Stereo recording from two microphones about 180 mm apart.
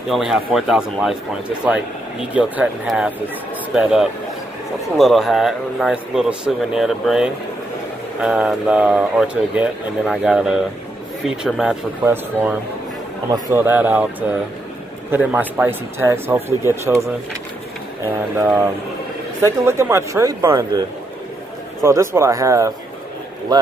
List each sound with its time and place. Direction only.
0.1 s speech: centre (ahead or behind)
15.0 s speech: 10° right (ahead or behind)
19.6 s speech: 15° right (ahead or behind)
21.8 s speech: 15° right (ahead or behind)